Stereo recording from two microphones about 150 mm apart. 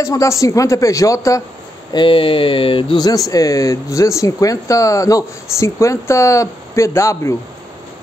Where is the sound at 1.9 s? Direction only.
35° left (ahead or behind).